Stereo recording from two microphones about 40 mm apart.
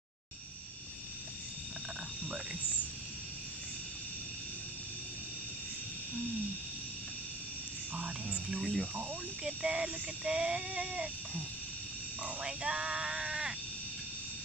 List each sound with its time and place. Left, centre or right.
7.9 s speech: right
8.5 s speech: centre
9.4 s speech: centre
12.2 s speech: right